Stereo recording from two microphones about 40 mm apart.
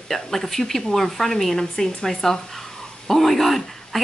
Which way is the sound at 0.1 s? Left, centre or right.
Centre.